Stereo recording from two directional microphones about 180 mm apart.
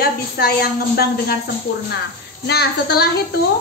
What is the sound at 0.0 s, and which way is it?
A woman's voice, 60° left (ahead or behind).